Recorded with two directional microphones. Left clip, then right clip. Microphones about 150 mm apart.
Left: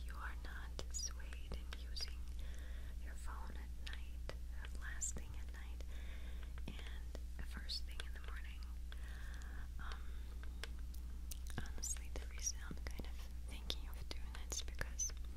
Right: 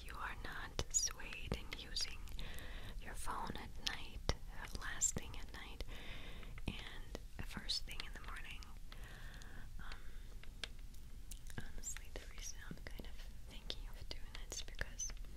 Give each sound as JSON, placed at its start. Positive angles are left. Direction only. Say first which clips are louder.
{"t": 0.1, "sound": "whispering", "louder": "right 5 dB", "side_deg": -30}
{"t": 9.1, "sound": "a sound", "louder": "even", "side_deg": -10}
{"t": 11.2, "sound": "whispering", "louder": "left 2 dB", "side_deg": 25}